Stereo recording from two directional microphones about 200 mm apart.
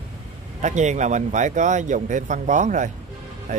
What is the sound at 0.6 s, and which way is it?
Speech, 35° right (ahead or behind).